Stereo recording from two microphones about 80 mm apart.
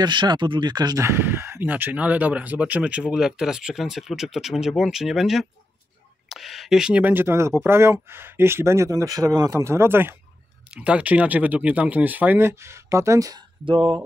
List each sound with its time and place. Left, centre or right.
0.0 s speech: right
1.0 s speech: right; by 7.0 s centre
7.0 s speech: right
10.7 s speech: centre; by 13.3 s right
13.7 s speech: right